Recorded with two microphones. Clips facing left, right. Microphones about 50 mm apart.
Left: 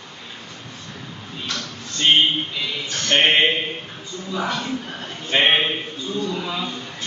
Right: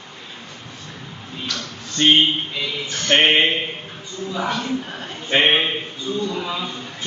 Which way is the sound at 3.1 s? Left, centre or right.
Right.